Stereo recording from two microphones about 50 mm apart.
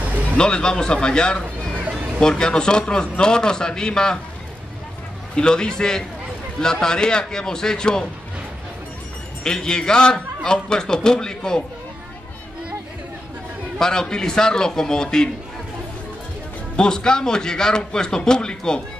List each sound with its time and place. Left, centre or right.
0.4 s a man's voice: centre
1.7 s a sound: right
2.1 s a man's voice: centre
5.3 s a man's voice: centre
9.4 s a man's voice: centre
13.7 s a man's voice: centre
16.7 s a man's voice: centre